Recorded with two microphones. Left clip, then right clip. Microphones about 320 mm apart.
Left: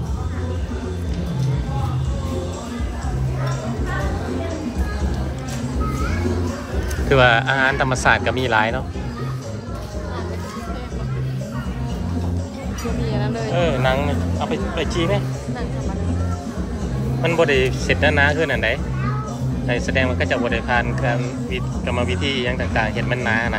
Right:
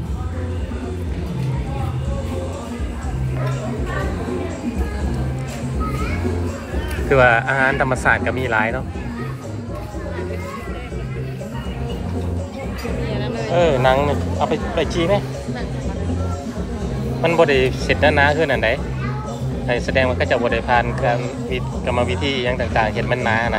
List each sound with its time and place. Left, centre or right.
7.2 s speech: centre
13.1 s music: left
13.5 s speech: centre
17.2 s a man's voice: centre